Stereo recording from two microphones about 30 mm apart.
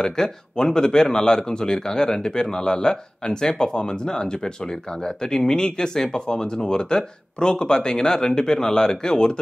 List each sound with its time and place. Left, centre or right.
0.2 s speech: centre
1.5 s speech: left
2.9 s speech: left